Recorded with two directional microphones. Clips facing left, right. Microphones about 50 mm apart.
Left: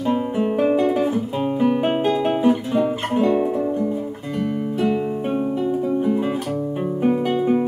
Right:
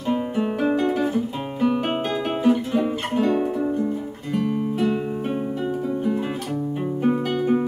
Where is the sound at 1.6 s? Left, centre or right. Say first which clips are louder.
Left 2 dB; centre.